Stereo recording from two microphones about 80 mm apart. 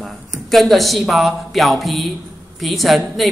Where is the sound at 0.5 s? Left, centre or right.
Centre.